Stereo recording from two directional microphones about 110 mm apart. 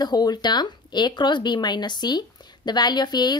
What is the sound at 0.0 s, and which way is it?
Speech, 40° left (ahead or behind).